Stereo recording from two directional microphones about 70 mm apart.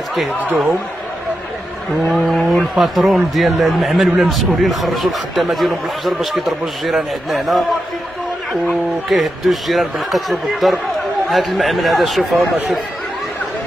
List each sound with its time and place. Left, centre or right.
2.0 s speech: centre
8.6 s speech: centre